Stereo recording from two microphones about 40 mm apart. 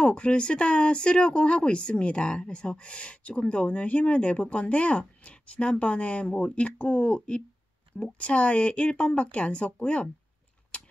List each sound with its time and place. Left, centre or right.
0.0 s speech: left